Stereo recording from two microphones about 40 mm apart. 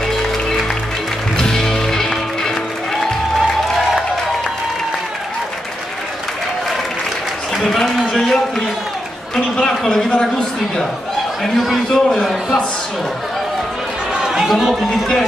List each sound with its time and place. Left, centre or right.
1.3 s music: centre
7.6 s a sound: centre
11.4 s a man's voice: centre
11.9 s a man's voice: centre
14.1 s chatter: centre
14.6 s speech: centre